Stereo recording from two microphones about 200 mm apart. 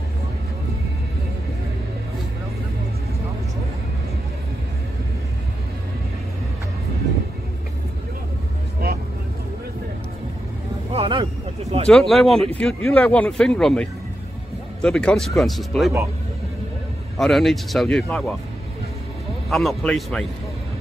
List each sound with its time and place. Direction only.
10.9 s a sound: 25° right (ahead or behind)
11.9 s speech: centre (ahead or behind)
17.2 s speech: centre (ahead or behind)
19.5 s speech: centre (ahead or behind)